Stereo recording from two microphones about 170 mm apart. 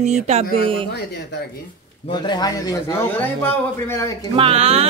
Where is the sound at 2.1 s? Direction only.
25° left (ahead or behind).